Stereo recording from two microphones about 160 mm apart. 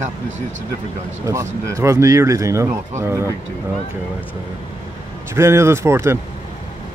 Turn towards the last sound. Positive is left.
turn(degrees=-15)  # may be behind; listen again after turning